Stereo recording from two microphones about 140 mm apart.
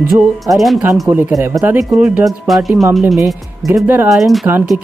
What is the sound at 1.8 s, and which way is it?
Speech, 5° right (ahead or behind).